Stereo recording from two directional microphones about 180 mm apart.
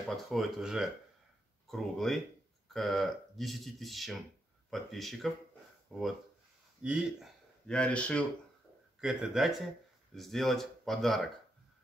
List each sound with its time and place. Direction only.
0.3 s speech: centre (ahead or behind)